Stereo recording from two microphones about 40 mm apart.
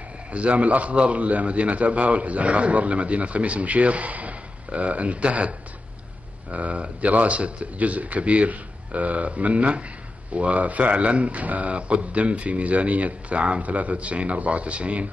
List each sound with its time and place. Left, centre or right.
0.3 s a man's voice: right
6.5 s a man's voice: right